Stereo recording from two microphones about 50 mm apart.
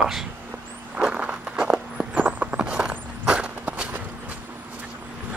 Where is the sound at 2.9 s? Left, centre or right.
Right.